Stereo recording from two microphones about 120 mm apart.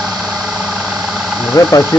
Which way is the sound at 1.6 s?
25° left (ahead or behind).